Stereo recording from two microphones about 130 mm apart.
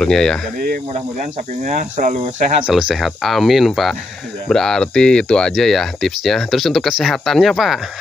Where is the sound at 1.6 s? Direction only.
85° right.